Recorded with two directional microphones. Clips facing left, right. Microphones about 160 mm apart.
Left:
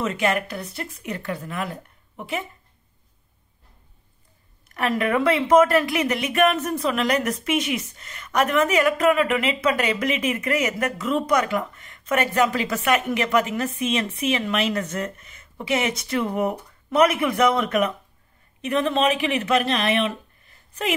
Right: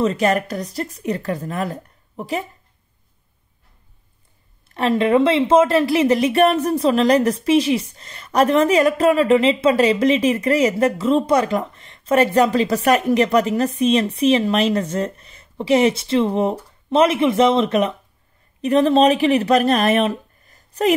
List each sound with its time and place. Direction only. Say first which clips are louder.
0.0 s a woman's voice: right 5 dB; 35° right (ahead or behind)
4.6 s a woman's voice: right 6 dB; 30° right (ahead or behind)